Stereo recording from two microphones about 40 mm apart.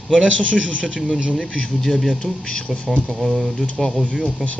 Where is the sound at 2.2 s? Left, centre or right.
Left.